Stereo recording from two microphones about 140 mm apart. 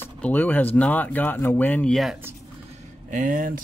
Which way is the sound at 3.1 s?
70° right (ahead or behind).